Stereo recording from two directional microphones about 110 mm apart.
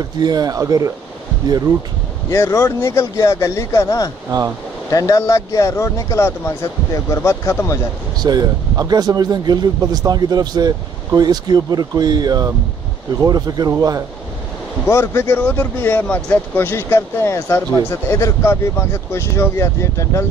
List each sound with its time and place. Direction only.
0.2 s speech: 35° right (ahead or behind)
2.3 s speech: 25° left (ahead or behind)
4.3 s speech: 45° right (ahead or behind)
4.9 s speech: 30° left (ahead or behind)
8.2 s speech: 35° right (ahead or behind)
14.9 s speech: 25° left (ahead or behind)